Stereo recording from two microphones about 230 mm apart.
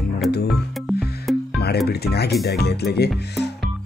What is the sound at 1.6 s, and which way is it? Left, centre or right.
Speech, left.